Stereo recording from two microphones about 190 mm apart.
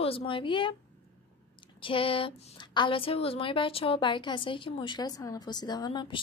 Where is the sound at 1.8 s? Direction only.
30° left (ahead or behind).